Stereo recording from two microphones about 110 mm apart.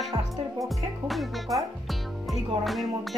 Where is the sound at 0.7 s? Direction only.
Centre (ahead or behind).